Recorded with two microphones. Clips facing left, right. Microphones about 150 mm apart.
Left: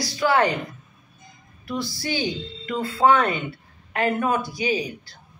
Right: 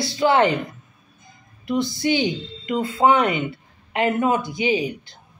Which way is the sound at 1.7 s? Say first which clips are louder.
Right 7 dB; 20° right (ahead or behind).